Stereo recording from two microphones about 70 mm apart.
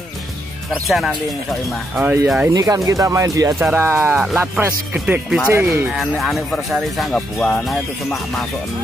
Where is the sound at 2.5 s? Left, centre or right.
Right.